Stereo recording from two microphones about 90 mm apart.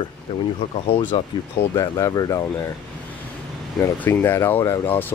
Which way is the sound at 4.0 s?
25° left (ahead or behind).